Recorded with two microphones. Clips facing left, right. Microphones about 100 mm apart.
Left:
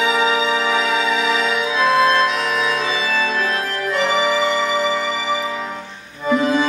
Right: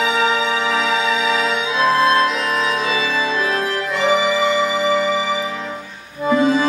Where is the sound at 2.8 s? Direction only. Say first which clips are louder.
Right 1 dB; 10° right (ahead or behind).